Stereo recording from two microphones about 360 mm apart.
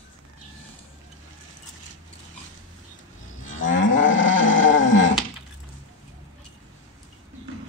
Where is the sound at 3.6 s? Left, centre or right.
Left.